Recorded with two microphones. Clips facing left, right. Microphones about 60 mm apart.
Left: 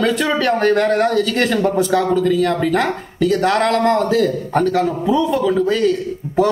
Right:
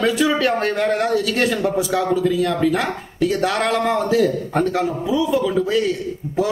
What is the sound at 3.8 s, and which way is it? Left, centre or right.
Speech, left.